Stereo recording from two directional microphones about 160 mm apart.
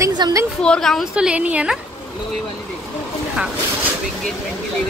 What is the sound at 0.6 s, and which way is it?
A woman's voice, 5° left (ahead or behind).